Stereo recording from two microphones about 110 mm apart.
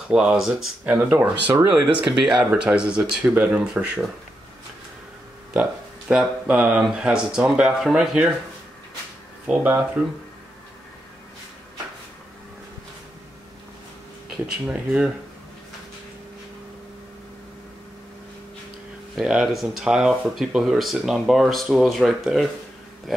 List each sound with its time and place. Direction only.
0.1 s speech: 10° right (ahead or behind)
1.1 s speech: 20° right (ahead or behind)
5.5 s speech: 10° right (ahead or behind)
9.5 s speech: 15° right (ahead or behind)
14.3 s speech: 10° right (ahead or behind)
19.1 s speech: 5° right (ahead or behind)
23.1 s a sound: centre (ahead or behind)